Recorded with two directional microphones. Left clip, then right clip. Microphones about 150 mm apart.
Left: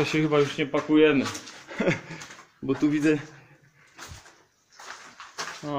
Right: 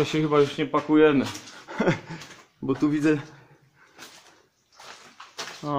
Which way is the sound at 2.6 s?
30° right (ahead or behind).